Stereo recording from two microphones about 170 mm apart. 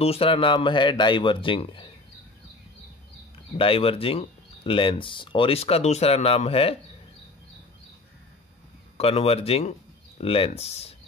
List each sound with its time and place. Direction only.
0.0 s speech: 35° left (ahead or behind)
3.5 s speech: 30° left (ahead or behind)
8.9 s speech: 35° left (ahead or behind)